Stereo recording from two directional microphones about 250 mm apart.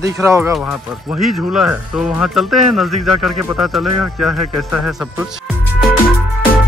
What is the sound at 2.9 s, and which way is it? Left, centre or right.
Speech, right.